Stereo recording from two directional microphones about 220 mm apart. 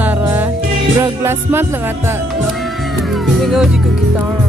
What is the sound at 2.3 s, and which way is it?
Music, centre (ahead or behind).